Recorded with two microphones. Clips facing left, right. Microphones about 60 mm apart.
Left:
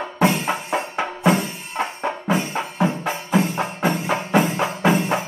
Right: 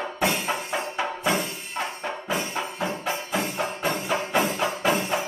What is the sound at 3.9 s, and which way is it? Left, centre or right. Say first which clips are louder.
Music: left 5 dB; left.